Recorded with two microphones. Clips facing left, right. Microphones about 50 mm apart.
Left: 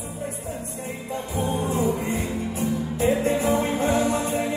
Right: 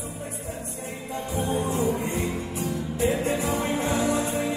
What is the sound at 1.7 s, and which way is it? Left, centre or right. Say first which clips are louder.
Music: left 2 dB; left.